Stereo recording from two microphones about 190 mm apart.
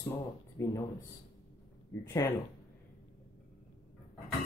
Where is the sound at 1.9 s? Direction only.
10° left (ahead or behind).